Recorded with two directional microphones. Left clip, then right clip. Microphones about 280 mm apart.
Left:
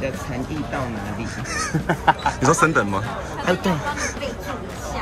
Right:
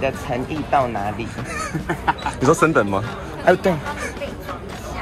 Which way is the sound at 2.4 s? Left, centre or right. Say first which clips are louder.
Right 2 dB; centre.